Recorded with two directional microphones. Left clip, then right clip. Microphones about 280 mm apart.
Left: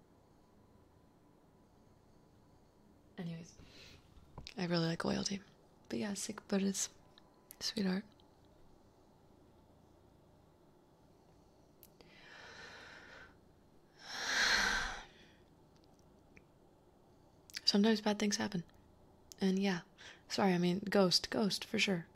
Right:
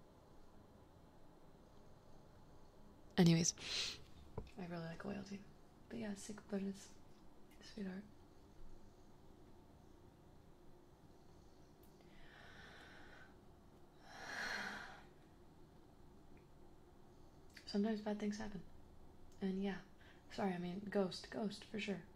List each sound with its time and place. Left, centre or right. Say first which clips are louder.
3.2 s a woman's voice: right 14 dB; right
4.6 s speech: left 14 dB; left
12.4 s a sound: left 7 dB; left
17.6 s a woman's voice: left 10 dB; left